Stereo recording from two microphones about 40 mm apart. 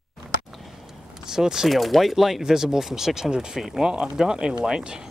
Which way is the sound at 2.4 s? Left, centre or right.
Centre.